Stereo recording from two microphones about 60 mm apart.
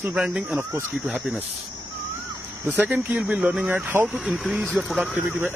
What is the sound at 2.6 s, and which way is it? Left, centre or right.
Speech, right.